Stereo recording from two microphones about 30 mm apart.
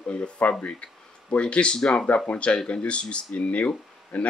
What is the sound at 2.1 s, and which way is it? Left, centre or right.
Speech, left.